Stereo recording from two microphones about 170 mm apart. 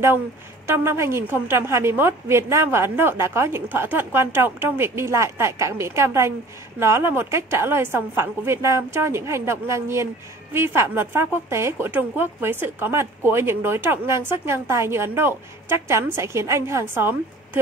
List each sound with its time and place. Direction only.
0.7 s a woman's voice: 15° right (ahead or behind)